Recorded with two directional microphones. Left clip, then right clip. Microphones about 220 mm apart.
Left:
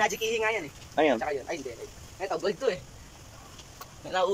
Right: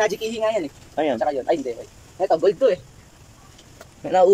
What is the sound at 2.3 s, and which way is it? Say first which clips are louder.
Speech: right 12 dB; 45° right (ahead or behind).